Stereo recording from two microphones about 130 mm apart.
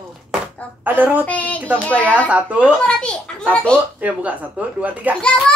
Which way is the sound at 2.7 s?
5° left (ahead or behind).